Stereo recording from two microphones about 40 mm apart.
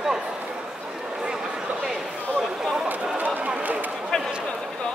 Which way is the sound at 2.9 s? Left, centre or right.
Right.